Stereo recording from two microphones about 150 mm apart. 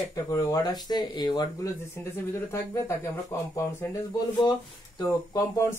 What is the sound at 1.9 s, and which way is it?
Speech, 15° left (ahead or behind).